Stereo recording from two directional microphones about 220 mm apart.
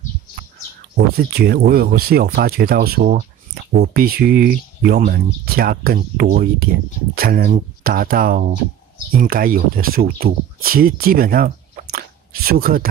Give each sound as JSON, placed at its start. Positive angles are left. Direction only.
{"t": 0.9, "sound": "speech", "side_deg": -45}